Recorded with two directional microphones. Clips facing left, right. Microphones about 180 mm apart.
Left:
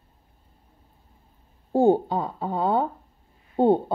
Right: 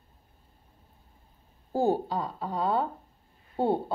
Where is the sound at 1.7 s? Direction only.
25° left (ahead or behind).